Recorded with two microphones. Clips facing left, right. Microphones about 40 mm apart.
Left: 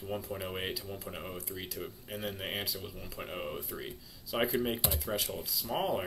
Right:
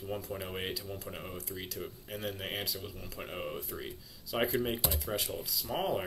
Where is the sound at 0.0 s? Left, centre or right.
Centre.